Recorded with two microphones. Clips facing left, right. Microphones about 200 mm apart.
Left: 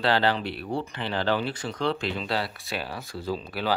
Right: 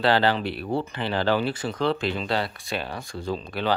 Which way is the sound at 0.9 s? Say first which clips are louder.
Right 2 dB; 35° right (ahead or behind).